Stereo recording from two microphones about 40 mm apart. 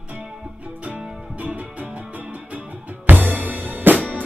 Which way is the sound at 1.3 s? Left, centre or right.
Right.